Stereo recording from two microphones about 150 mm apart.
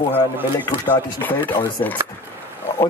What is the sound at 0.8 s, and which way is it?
Speech, 10° left (ahead or behind).